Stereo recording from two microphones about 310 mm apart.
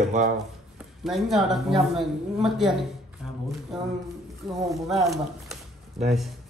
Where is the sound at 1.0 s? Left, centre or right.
Centre.